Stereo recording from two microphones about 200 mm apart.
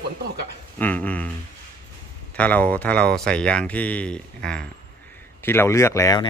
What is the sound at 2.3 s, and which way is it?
Speech, 5° left (ahead or behind).